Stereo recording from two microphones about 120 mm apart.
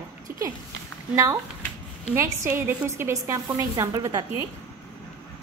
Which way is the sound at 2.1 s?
20° right (ahead or behind).